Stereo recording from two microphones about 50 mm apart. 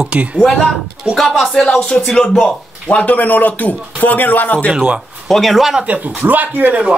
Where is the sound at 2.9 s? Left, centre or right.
Centre.